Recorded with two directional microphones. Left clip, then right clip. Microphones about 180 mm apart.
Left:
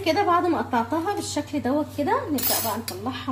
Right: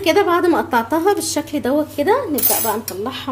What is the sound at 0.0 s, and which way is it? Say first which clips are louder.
A woman's voice: right 6 dB; 45° right (ahead or behind).